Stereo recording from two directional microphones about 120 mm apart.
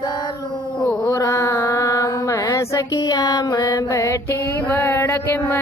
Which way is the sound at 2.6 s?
25° left (ahead or behind).